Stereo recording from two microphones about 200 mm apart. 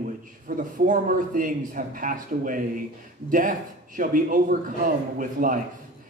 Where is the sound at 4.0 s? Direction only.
45° right (ahead or behind).